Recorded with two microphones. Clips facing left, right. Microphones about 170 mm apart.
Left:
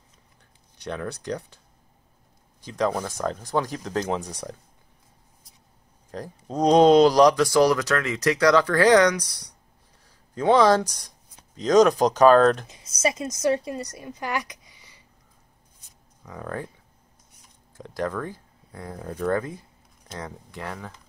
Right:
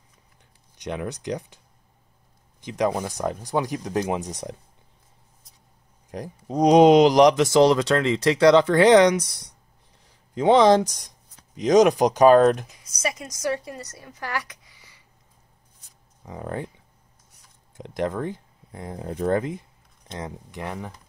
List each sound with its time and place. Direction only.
0.7 s speech: 15° right (ahead or behind)
2.6 s speech: 20° right (ahead or behind)
6.1 s speech: 15° right (ahead or behind)
12.6 s a woman's voice: 25° left (ahead or behind)
16.2 s speech: 20° right (ahead or behind)
17.7 s speech: 20° right (ahead or behind)